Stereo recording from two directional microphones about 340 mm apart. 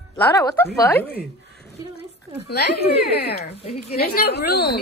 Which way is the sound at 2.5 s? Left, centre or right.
Left.